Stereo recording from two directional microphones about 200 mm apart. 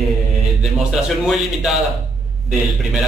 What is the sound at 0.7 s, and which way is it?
A man's voice, centre (ahead or behind).